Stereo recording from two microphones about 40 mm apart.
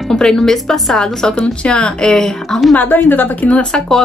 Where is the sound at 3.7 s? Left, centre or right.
Left.